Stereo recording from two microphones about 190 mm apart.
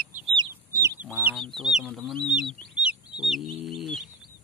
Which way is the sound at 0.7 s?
15° left (ahead or behind).